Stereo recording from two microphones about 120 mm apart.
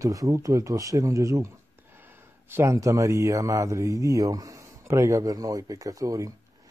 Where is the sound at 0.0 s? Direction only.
25° right (ahead or behind).